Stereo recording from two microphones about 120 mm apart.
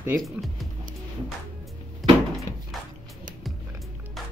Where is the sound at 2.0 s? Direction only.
Centre (ahead or behind).